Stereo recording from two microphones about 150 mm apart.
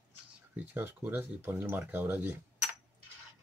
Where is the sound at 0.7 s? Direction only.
15° right (ahead or behind).